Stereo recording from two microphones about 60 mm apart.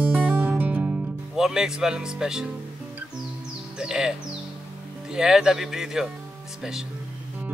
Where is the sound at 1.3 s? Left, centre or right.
Centre.